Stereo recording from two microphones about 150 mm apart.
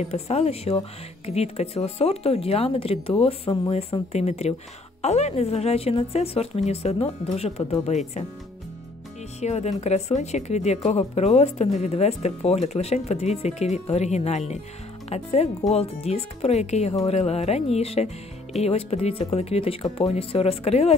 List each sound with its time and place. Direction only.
0.0 s a woman's voice: 45° left (ahead or behind)
9.4 s a woman's voice: 45° left (ahead or behind)